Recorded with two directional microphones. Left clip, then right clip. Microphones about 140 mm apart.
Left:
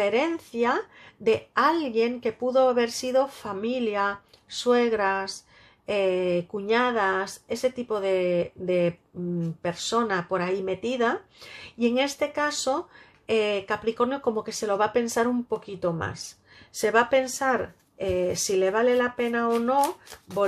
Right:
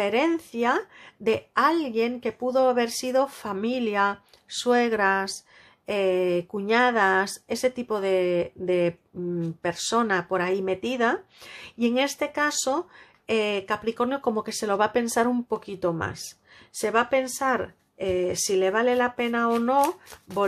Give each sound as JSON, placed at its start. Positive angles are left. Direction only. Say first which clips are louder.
{"t": 0.0, "sound": "speech", "louder": "right 1 dB", "side_deg": -20}
{"t": 19.8, "sound": "speech", "louder": "right 1 dB", "side_deg": -5}